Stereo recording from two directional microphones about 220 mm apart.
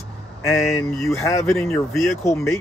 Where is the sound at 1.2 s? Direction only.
15° left (ahead or behind).